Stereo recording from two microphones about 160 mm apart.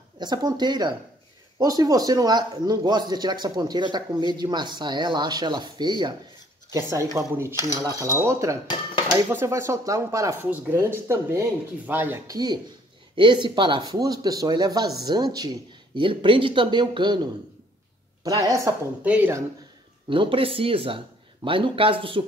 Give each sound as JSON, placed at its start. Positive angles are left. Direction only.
{"t": 0.2, "sound": "a man's voice", "side_deg": -25}
{"t": 13.1, "sound": "a man's voice", "side_deg": -30}
{"t": 18.2, "sound": "a man's voice", "side_deg": -20}
{"t": 19.0, "sound": "speech", "side_deg": -10}
{"t": 20.1, "sound": "speech", "side_deg": -30}